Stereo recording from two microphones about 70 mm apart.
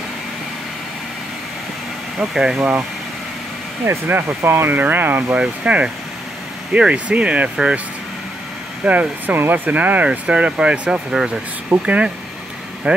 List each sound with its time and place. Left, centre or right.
2.1 s speech: centre
4.1 s speech: right
5.4 s speech: centre
8.8 s speech: right